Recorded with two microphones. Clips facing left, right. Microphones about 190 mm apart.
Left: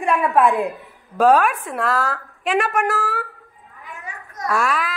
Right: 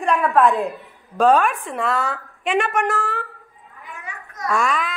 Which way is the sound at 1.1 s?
5° left (ahead or behind).